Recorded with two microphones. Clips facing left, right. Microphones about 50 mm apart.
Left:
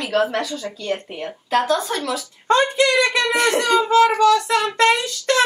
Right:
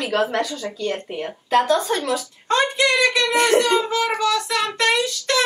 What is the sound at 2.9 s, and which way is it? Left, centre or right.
Speech, left.